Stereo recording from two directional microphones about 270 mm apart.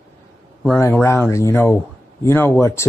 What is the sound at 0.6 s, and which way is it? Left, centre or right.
Speech, centre.